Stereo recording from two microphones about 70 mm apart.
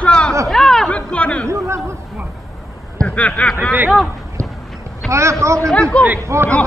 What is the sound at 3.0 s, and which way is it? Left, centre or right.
Speech, centre.